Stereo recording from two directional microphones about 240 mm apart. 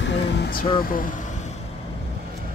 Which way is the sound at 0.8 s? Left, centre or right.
Left.